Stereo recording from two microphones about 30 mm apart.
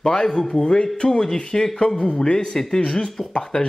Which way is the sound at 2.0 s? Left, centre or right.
Left.